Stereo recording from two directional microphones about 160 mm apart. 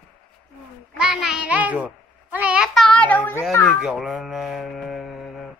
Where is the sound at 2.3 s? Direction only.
5° right (ahead or behind); by 3.4 s 10° left (ahead or behind).